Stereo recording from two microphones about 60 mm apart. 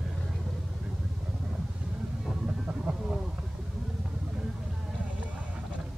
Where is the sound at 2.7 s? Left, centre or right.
Right.